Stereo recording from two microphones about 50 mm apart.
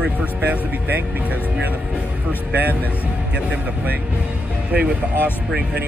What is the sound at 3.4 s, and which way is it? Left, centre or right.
Speech, right.